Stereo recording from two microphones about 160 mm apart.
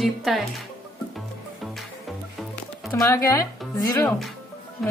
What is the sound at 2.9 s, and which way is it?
Speech, 15° left (ahead or behind).